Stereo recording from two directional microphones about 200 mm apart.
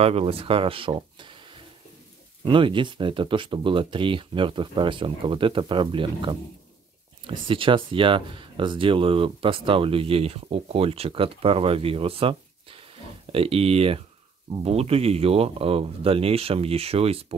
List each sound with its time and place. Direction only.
0.0 s speech: 30° right (ahead or behind)
2.4 s speech: 25° right (ahead or behind)